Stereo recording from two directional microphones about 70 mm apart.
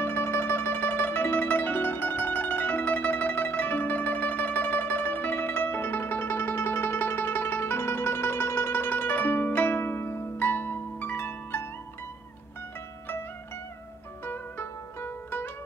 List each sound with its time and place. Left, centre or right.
0.0 s music: left
14.2 s music: left